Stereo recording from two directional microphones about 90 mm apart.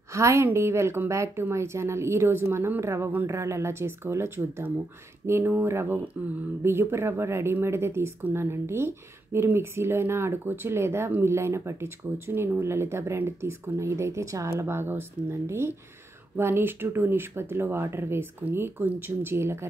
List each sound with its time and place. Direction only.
0.1 s speech: 35° right (ahead or behind)